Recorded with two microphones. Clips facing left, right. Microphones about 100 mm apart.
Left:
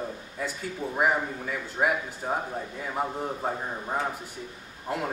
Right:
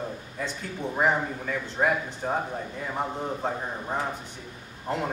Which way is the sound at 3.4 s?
5° left (ahead or behind).